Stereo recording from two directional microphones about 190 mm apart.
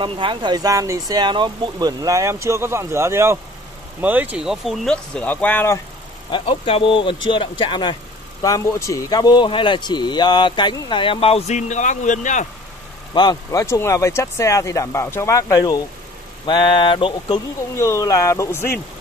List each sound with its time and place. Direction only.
0.0 s speech: 25° right (ahead or behind); by 5.8 s 10° left (ahead or behind)
6.3 s speech: 30° left (ahead or behind)
13.1 s speech: 20° left (ahead or behind)
17.7 s speech: 15° left (ahead or behind)